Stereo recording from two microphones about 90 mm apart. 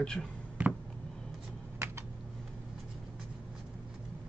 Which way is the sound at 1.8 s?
30° right (ahead or behind).